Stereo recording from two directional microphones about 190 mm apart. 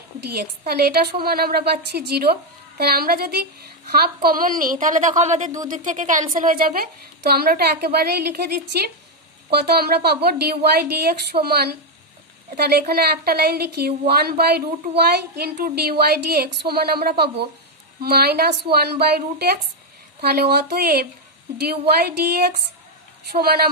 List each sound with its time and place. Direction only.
0.3 s a woman's voice: 55° right (ahead or behind)
15.3 s a woman's voice: 55° right (ahead or behind)